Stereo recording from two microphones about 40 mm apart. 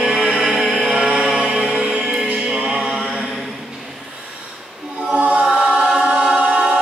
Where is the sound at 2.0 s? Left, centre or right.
Centre.